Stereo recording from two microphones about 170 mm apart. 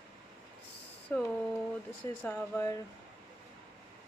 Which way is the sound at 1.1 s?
10° left (ahead or behind).